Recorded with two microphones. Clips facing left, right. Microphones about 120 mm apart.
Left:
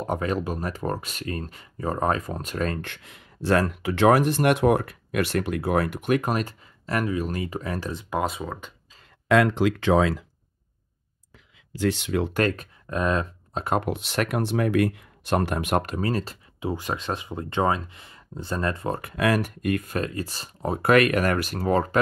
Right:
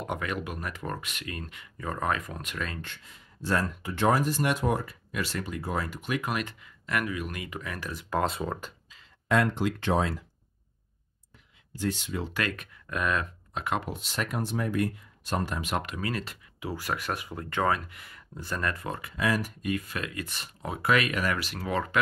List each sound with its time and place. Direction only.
0.0 s speech: 35° left (ahead or behind)
2.8 s speech: 65° left (ahead or behind); by 8.1 s 30° left (ahead or behind)
8.3 s speech: centre (ahead or behind)
9.3 s speech: 90° left
11.7 s speech: 80° left
12.4 s speech: 40° left (ahead or behind)
13.7 s speech: 70° left (ahead or behind)
15.8 s speech: 40° left (ahead or behind)
18.9 s speech: 55° left (ahead or behind); by 21.9 s 40° left (ahead or behind)